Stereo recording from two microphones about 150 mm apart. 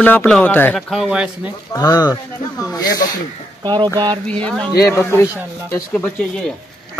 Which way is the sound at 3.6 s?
30° right (ahead or behind).